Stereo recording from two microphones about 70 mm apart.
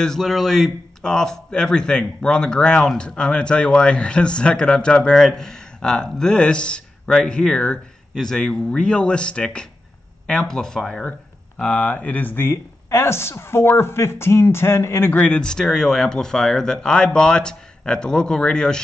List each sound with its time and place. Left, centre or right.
0.0 s speech: centre
11.1 s speech: centre; by 15.1 s left
15.1 s speech: centre